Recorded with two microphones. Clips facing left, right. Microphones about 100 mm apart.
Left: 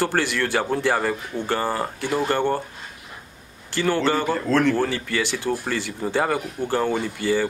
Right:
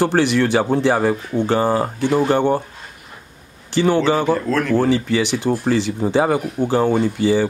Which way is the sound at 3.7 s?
20° right (ahead or behind).